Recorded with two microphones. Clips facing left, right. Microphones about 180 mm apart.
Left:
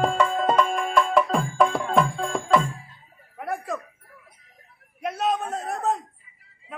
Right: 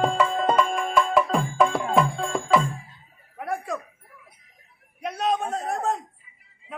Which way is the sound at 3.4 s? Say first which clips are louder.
Even; centre (ahead or behind).